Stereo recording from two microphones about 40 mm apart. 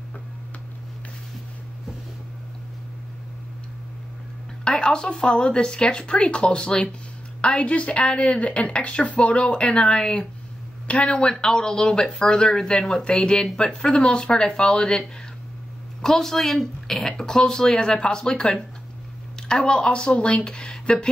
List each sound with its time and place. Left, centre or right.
4.6 s a woman's voice: centre
11.4 s a woman's voice: centre
16.0 s a woman's voice: centre